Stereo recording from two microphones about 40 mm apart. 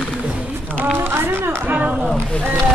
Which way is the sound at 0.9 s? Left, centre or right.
Right.